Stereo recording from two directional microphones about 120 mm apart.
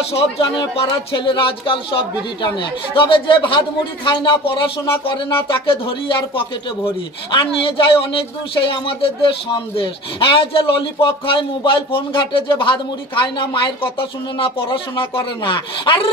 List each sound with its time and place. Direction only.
0.1 s speech: 50° left (ahead or behind)